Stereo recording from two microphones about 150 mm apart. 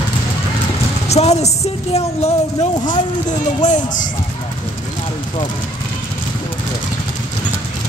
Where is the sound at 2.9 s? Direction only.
55° left (ahead or behind).